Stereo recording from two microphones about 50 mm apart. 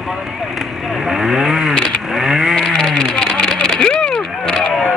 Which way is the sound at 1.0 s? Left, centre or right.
Centre.